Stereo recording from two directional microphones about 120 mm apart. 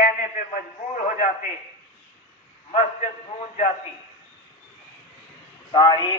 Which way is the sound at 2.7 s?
65° left (ahead or behind).